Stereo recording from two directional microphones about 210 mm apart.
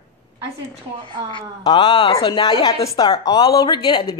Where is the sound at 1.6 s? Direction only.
25° left (ahead or behind).